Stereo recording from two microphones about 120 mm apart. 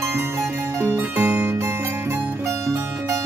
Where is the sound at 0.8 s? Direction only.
20° right (ahead or behind).